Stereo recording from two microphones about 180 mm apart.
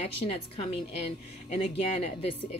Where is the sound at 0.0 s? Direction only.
35° left (ahead or behind).